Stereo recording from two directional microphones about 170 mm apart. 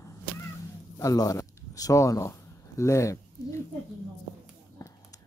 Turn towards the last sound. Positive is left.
turn(degrees=20)  # may be behind; listen again after turning